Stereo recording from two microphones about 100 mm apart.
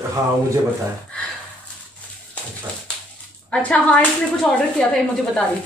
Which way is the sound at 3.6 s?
15° left (ahead or behind).